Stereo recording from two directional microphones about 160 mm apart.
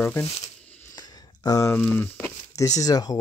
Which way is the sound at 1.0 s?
25° left (ahead or behind).